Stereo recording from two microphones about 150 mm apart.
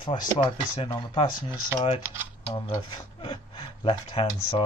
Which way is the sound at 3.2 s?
30° left (ahead or behind).